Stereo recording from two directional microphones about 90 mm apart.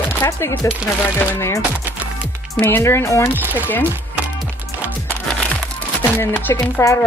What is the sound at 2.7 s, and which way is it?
Speech, 30° left (ahead or behind).